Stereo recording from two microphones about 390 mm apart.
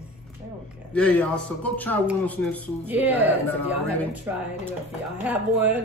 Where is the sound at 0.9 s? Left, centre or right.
Centre.